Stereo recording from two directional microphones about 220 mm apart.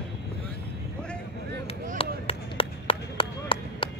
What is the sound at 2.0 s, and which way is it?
Chop, 25° left (ahead or behind).